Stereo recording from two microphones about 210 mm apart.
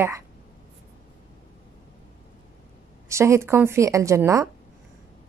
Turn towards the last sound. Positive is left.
turn(degrees=-15)  # may be behind; listen again after turning